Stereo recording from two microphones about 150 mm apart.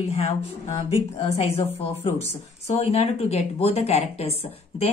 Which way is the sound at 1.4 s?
45° left (ahead or behind).